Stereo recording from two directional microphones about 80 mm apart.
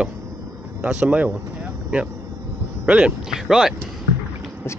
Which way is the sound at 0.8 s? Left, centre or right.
Centre.